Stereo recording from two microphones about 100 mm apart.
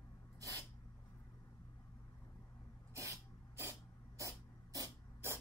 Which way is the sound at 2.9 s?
30° right (ahead or behind).